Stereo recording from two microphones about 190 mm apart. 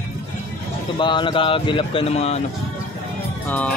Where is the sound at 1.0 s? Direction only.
25° left (ahead or behind).